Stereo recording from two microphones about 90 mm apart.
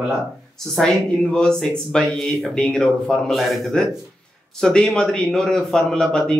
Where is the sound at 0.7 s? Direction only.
5° left (ahead or behind).